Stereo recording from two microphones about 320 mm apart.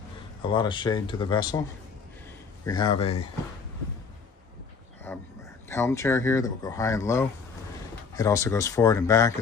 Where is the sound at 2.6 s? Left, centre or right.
Centre.